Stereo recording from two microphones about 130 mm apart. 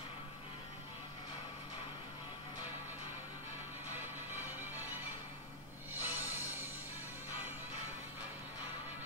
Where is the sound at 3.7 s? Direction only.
15° right (ahead or behind).